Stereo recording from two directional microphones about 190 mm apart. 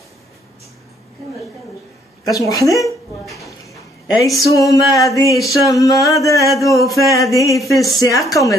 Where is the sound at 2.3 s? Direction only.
20° left (ahead or behind).